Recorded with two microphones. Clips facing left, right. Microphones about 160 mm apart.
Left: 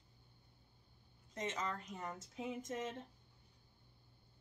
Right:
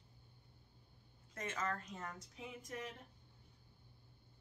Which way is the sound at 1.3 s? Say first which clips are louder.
Even; 20° left (ahead or behind).